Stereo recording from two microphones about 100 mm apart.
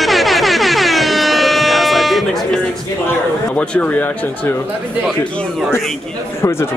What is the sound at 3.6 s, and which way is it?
Speech, 15° left (ahead or behind).